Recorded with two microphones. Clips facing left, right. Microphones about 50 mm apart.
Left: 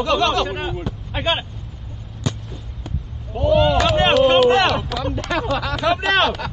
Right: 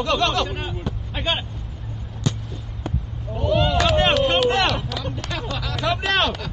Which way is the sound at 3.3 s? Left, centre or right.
Centre.